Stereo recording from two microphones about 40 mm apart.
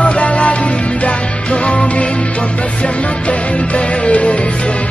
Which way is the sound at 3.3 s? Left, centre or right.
Left.